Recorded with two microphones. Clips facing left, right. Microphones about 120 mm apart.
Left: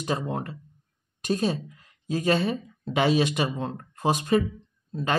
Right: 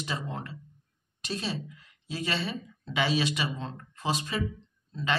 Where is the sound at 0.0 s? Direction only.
50° left (ahead or behind).